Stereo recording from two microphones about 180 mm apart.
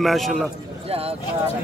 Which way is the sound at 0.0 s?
Centre (ahead or behind).